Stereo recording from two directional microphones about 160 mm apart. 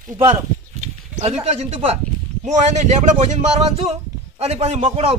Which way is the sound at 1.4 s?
40° right (ahead or behind).